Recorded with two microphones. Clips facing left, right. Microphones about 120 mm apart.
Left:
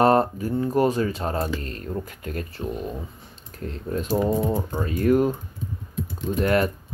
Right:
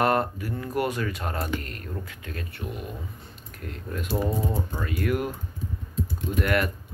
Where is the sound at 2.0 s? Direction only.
40° left (ahead or behind).